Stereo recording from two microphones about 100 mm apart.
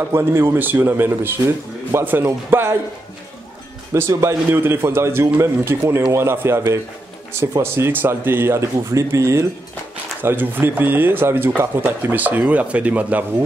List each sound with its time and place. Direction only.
0.1 s speech: 25° right (ahead or behind)
3.9 s speech: 25° right (ahead or behind)